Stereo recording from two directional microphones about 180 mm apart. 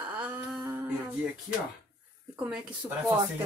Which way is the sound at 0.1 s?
5° right (ahead or behind).